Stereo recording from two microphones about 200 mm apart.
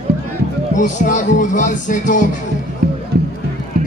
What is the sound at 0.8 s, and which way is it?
Speech, 40° left (ahead or behind).